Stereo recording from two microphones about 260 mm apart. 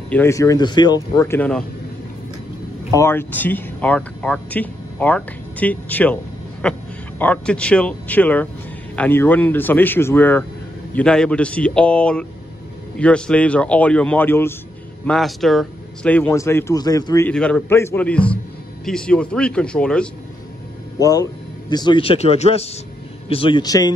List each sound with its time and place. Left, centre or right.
0.1 s speech: centre
2.9 s a man's voice: centre